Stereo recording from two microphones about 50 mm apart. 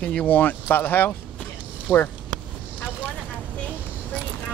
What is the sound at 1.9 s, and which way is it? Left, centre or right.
Speech, left.